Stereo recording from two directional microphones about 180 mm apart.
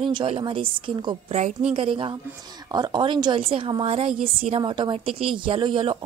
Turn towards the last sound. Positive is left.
turn(degrees=-25)  # may be behind; listen again after turning